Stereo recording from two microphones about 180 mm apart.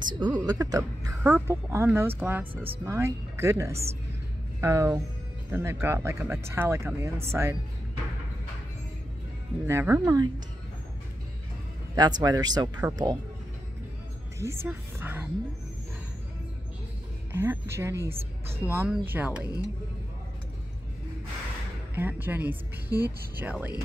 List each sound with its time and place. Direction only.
0.0 s a woman's voice: 25° right (ahead or behind)
9.7 s a woman's voice: 15° right (ahead or behind)
11.9 s speech: 20° right (ahead or behind)
14.4 s speech: 15° right (ahead or behind)
17.3 s a woman's voice: 15° right (ahead or behind)
21.9 s a woman's voice: 10° right (ahead or behind)